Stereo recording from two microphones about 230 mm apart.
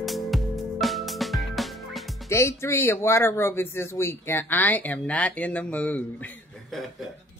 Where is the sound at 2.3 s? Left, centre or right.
Centre.